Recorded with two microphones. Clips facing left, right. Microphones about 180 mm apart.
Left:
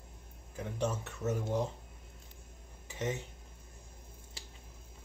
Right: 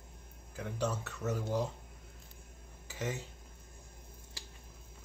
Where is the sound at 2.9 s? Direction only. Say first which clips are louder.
Left 2 dB; 25° left (ahead or behind).